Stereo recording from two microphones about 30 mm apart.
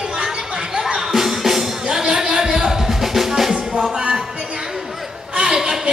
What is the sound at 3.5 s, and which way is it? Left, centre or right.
Music, right.